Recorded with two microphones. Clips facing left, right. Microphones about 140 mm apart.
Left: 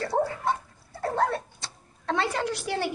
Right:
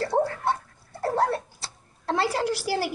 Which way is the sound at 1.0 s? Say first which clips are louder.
Right 2 dB; 30° right (ahead or behind).